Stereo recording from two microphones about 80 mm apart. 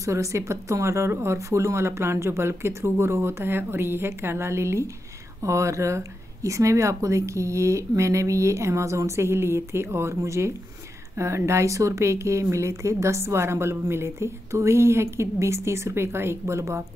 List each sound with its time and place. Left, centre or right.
0.0 s speech: right